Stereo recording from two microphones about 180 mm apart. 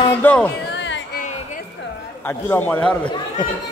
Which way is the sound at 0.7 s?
90° left.